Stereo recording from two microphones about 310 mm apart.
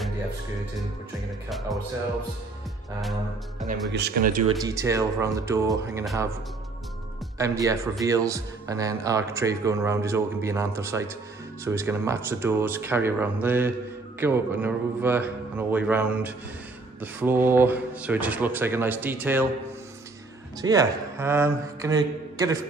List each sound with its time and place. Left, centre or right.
3.9 s speech: right
4.6 s speech: centre
7.3 s speech: centre
20.6 s speech: centre